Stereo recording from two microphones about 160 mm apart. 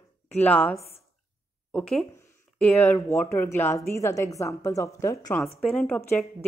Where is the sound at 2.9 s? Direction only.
20° left (ahead or behind).